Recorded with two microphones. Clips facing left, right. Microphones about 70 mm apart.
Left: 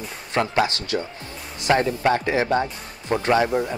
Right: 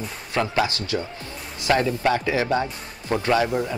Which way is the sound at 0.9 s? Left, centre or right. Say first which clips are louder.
Left 1 dB; centre.